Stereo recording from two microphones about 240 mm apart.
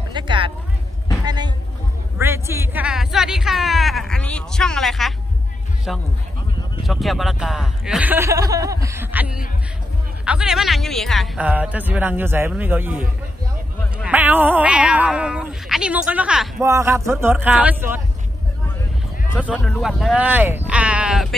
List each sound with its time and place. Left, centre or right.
0.1 s a sound: centre
5.9 s a man's voice: centre
14.0 s a man's voice: centre
19.5 s speech: centre